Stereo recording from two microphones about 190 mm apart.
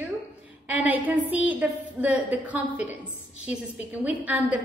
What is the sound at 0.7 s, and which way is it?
A woman's voice, 10° right (ahead or behind).